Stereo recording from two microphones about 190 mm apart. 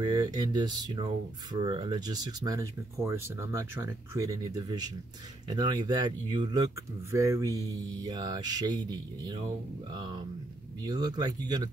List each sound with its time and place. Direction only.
0.0 s speech: 20° right (ahead or behind)